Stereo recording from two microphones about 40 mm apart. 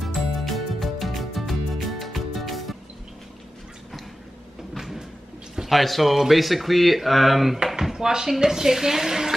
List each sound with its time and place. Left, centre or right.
0.0 s music: centre
5.7 s speech: centre
7.5 s a sound: centre
7.8 s speech: centre